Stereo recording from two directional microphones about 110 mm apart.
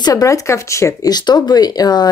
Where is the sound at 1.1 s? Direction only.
40° left (ahead or behind).